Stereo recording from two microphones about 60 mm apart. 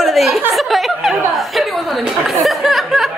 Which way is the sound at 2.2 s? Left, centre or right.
Centre.